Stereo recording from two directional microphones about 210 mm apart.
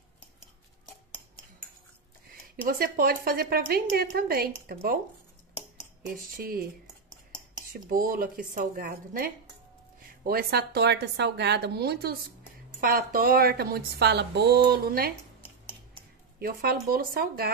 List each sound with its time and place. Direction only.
2.5 s a woman's voice: 45° right (ahead or behind)
6.3 s a woman's voice: 45° right (ahead or behind)
7.7 s a woman's voice: 40° right (ahead or behind)
16.3 s a woman's voice: 45° right (ahead or behind)